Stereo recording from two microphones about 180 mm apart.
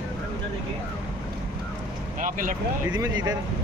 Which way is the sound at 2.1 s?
45° right (ahead or behind).